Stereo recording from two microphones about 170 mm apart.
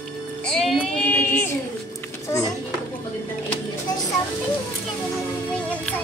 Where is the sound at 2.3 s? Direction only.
15° left (ahead or behind).